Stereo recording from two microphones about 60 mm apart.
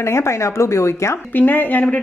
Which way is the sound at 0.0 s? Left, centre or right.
Left.